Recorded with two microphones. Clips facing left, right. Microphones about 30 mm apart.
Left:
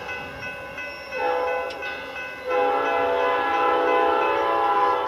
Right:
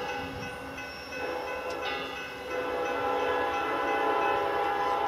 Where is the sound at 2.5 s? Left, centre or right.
Left.